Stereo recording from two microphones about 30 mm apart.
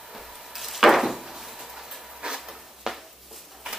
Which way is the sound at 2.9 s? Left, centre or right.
Centre.